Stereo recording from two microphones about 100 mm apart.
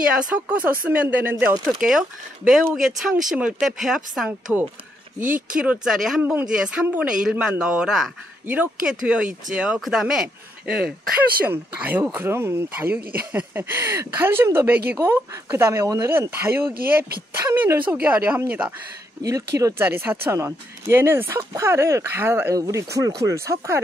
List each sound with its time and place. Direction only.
0.3 s speech: 15° right (ahead or behind)
1.6 s speech: 5° right (ahead or behind)
5.6 s speech: 5° right (ahead or behind)
11.4 s speech: 20° right (ahead or behind)
19.2 s speech: 35° right (ahead or behind)
19.8 s speech: 20° right (ahead or behind)